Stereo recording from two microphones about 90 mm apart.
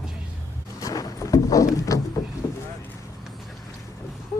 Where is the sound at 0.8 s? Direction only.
40° left (ahead or behind).